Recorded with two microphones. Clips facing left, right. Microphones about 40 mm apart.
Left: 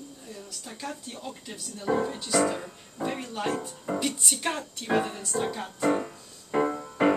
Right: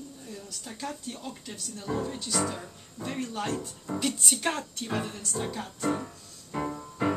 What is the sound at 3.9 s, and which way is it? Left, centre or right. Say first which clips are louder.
Music: right 1 dB; centre.